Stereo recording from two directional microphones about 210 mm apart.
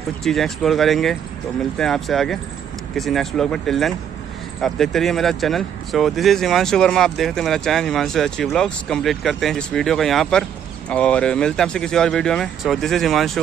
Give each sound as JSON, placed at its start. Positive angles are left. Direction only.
{"t": 0.2, "sound": "speech", "side_deg": 0}